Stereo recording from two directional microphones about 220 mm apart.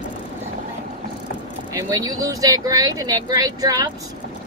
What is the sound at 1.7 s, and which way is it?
Speech, 15° right (ahead or behind).